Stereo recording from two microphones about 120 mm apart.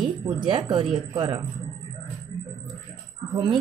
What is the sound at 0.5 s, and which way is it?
Speech, 40° right (ahead or behind).